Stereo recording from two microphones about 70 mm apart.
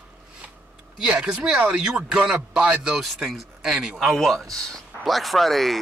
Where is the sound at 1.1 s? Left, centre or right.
Centre.